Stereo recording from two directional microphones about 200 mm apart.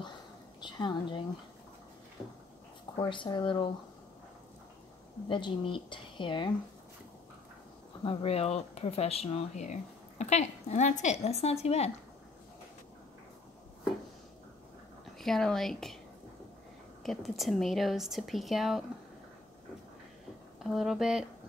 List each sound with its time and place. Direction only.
0.6 s a woman's voice: 20° left (ahead or behind)
3.0 s a woman's voice: 25° left (ahead or behind)
5.3 s a woman's voice: 25° left (ahead or behind)
8.0 s speech: 30° left (ahead or behind)
15.1 s speech: centre (ahead or behind)
17.0 s speech: centre (ahead or behind)
20.6 s speech: centre (ahead or behind)